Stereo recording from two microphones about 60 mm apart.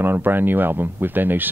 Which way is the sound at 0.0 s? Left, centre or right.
Right.